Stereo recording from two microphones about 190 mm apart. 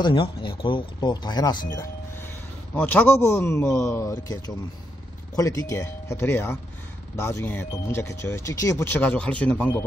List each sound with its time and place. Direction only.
0.0 s speech: 25° left (ahead or behind)
2.7 s speech: 10° left (ahead or behind)